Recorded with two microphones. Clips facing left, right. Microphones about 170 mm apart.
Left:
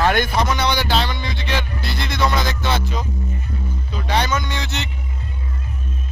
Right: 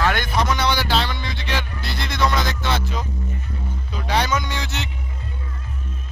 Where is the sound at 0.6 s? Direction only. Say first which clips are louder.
Left 1 dB; 5° right (ahead or behind).